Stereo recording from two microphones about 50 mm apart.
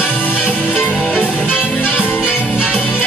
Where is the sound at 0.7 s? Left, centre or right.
Left.